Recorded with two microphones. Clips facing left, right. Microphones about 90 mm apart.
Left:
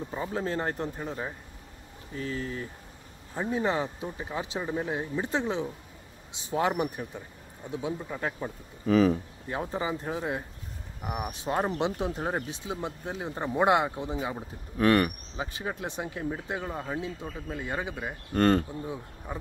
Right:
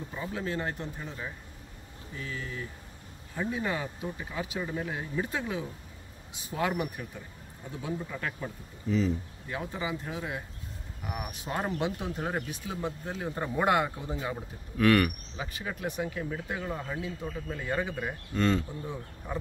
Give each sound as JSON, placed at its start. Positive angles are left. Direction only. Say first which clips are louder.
{"t": 0.1, "sound": "speech", "louder": "left 3 dB", "side_deg": 35}
{"t": 8.8, "sound": "speech", "louder": "left 6 dB", "side_deg": 70}
{"t": 9.5, "sound": "speech", "louder": "left 3 dB", "side_deg": 35}
{"t": 14.8, "sound": "speech", "louder": "left 1 dB", "side_deg": 30}
{"t": 18.3, "sound": "speech", "louder": "left 5 dB", "side_deg": 55}